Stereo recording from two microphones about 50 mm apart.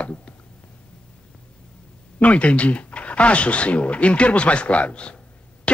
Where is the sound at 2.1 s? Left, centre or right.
Left.